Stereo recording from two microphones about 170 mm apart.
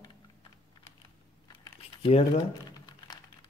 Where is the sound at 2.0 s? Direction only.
35° left (ahead or behind).